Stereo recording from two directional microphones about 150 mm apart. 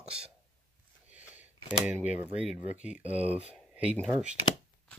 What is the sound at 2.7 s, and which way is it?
Speech, 10° right (ahead or behind).